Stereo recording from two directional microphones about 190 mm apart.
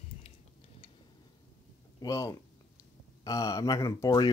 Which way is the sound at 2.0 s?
20° left (ahead or behind).